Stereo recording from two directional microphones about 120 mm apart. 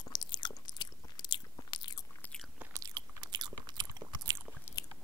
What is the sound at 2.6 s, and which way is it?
Biting, 25° right (ahead or behind).